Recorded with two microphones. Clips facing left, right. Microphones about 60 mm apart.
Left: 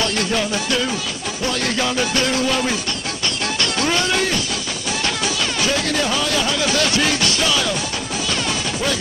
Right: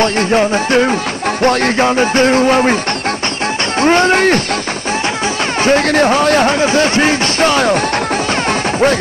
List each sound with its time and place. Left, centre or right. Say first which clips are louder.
0.0 s music: right 9 dB; right
3.8 s speech: right 11 dB; right
5.6 s speech: right 11 dB; right